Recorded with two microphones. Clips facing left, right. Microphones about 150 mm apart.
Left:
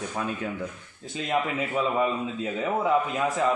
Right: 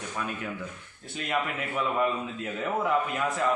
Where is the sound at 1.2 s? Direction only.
20° left (ahead or behind).